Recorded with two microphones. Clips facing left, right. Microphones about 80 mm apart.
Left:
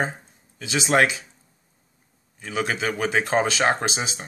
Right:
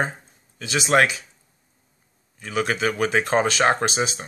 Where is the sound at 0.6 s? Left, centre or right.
Centre.